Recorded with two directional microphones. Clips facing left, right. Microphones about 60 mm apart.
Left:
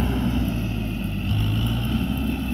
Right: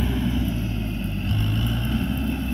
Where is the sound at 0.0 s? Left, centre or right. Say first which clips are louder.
Left 1 dB; left.